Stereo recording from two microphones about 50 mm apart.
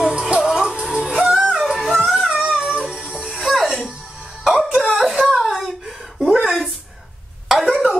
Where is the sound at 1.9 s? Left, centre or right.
Centre.